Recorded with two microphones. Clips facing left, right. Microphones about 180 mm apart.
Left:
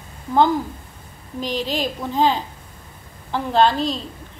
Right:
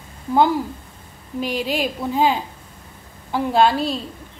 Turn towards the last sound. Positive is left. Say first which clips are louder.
# even
turn(degrees=-10)  # may be behind; listen again after turning